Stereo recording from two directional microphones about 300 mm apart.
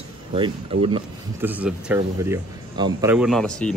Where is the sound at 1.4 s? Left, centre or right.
Centre.